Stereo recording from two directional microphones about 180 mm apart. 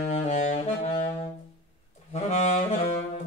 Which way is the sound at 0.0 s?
40° left (ahead or behind).